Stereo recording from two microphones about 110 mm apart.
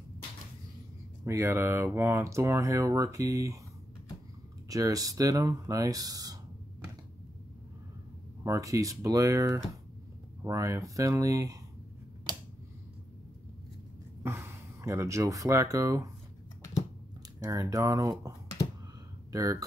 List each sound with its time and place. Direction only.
1.2 s speech: 25° right (ahead or behind)
4.6 s speech: 30° right (ahead or behind)
8.5 s speech: 30° right (ahead or behind)
14.2 s speech: 25° right (ahead or behind)
17.4 s speech: 35° right (ahead or behind)
19.3 s speech: 30° right (ahead or behind)